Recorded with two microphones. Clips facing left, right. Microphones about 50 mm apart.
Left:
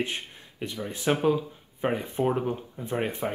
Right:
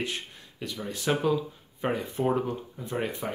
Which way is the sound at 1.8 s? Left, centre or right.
Centre.